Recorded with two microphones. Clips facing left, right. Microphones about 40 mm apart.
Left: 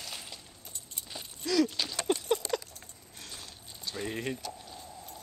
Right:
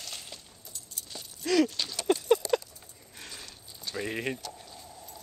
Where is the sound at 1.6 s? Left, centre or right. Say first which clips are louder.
Right 1 dB; centre.